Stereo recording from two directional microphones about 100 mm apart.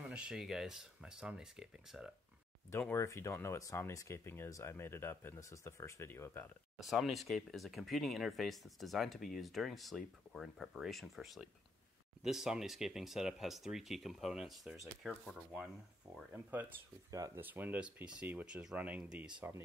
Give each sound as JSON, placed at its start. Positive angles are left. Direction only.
{"t": 0.1, "sound": "speech", "side_deg": -5}
{"t": 2.9, "sound": "speech", "side_deg": 25}
{"t": 6.8, "sound": "speech", "side_deg": 0}
{"t": 16.3, "sound": "speech", "side_deg": -20}